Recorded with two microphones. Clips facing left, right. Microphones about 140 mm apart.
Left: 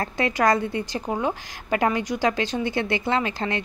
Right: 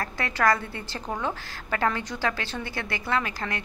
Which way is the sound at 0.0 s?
20° left (ahead or behind).